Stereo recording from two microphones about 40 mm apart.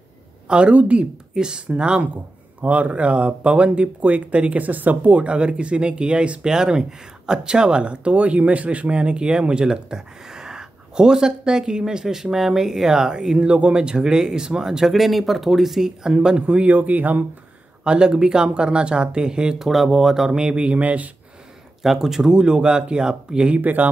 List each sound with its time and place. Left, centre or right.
0.5 s speech: right
1.3 s speech: centre
2.6 s speech: right; by 14.9 s centre
14.9 s speech: centre
16.1 s speech: right
16.7 s speech: right
17.8 s speech: right
19.6 s speech: centre
20.2 s speech: right
20.8 s speech: right
21.8 s speech: centre
22.3 s speech: right
23.6 s speech: right